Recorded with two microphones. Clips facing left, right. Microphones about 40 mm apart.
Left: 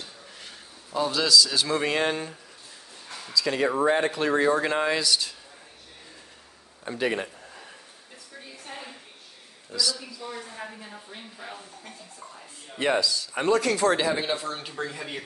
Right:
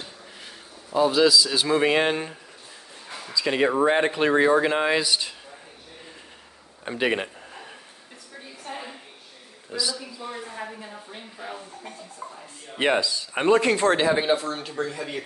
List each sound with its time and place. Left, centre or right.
0.8 s speech: centre
3.1 s a sound: centre
3.4 s speech: right
6.8 s a sound: right
8.4 s a sound: centre
9.7 s a man's voice: right
10.6 s speech: centre
12.7 s a man's voice: right
14.3 s speech: centre